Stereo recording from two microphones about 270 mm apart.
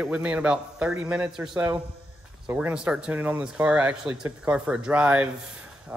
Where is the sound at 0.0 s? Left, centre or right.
Centre.